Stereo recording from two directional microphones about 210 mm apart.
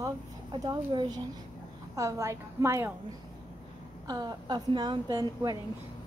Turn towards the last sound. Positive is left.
turn(degrees=-15)  # may be behind; listen again after turning